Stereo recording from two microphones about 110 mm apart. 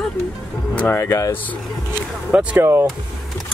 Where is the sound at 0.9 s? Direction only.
25° left (ahead or behind).